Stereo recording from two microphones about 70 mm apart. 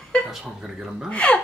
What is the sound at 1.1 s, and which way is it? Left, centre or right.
Speech, centre.